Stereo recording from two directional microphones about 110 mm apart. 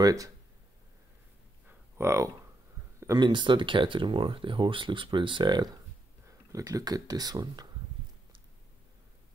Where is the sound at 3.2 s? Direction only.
45° right (ahead or behind).